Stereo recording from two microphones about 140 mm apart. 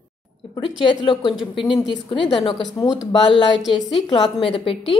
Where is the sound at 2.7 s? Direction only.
25° left (ahead or behind).